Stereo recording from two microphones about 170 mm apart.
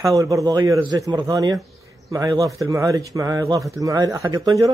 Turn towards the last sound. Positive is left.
turn(degrees=-20)  # may be behind; listen again after turning